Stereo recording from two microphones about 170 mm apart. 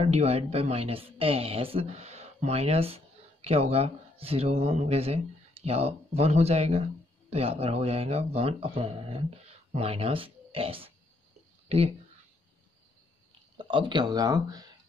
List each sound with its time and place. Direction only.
0.0 s speech: 40° right (ahead or behind)
13.7 s speech: 30° right (ahead or behind)